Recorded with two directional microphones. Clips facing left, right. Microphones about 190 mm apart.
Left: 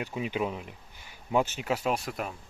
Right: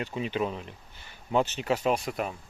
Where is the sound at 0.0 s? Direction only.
10° left (ahead or behind).